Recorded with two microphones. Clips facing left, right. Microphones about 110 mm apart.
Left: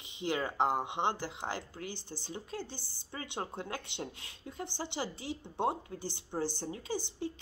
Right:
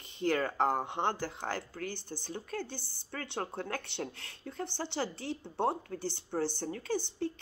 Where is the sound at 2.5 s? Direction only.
55° right (ahead or behind).